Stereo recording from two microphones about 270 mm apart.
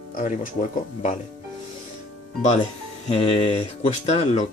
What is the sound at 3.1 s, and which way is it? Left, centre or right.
Speech, left.